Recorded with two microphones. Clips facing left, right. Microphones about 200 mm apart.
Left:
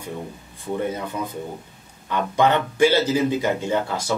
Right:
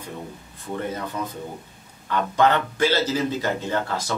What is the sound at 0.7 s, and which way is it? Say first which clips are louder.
Speech: left 2 dB; 10° left (ahead or behind).